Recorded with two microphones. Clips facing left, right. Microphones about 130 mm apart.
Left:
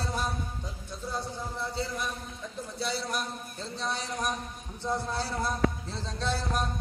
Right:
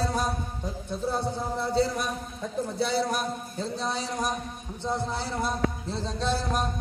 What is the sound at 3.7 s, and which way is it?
Speech, 35° right (ahead or behind).